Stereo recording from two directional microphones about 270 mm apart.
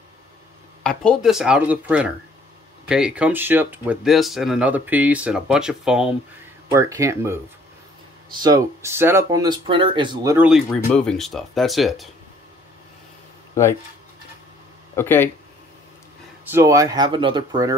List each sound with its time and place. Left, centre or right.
0.8 s speech: centre
15.0 s speech: centre
16.4 s speech: centre